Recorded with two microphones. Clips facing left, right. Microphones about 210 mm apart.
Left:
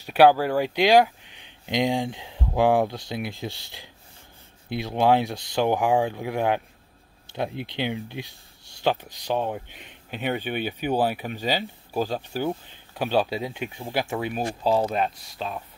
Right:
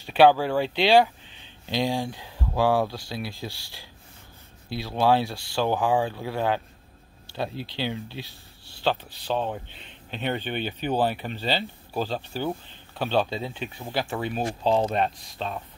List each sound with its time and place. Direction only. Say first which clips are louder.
0.0 s speech: left 1 dB; 10° left (ahead or behind)